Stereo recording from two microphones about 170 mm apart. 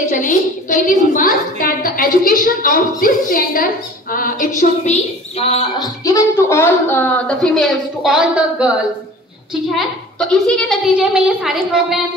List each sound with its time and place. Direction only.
0.1 s a woman's voice: 50° left (ahead or behind)
5.8 s a woman's voice: 20° left (ahead or behind); by 8.7 s 5° right (ahead or behind)
10.1 s a woman's voice: 5° left (ahead or behind)